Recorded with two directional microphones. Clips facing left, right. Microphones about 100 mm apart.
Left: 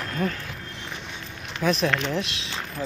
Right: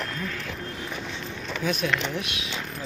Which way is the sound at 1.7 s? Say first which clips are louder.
Left 2 dB; 30° left (ahead or behind).